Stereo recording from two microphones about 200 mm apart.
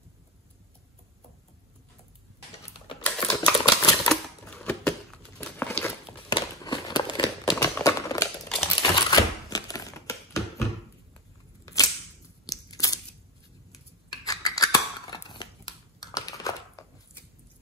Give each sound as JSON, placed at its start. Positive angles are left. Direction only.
{"t": 3.0, "sound": "typing", "side_deg": 5}
{"t": 3.5, "sound": "typewriter", "side_deg": 20}
{"t": 4.1, "sound": "typewriter", "side_deg": 5}
{"t": 5.4, "sound": "a sound", "side_deg": 10}
{"t": 8.5, "sound": "typing", "side_deg": 5}
{"t": 8.8, "sound": "typewriter", "side_deg": 20}
{"t": 11.6, "sound": "a sound", "side_deg": 15}
{"t": 12.4, "sound": "scissors", "side_deg": 15}
{"t": 14.2, "sound": "scissors", "side_deg": 15}
{"t": 16.0, "sound": "a sound", "side_deg": 15}